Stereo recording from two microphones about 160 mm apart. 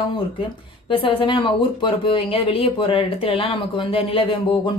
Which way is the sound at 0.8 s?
35° left (ahead or behind).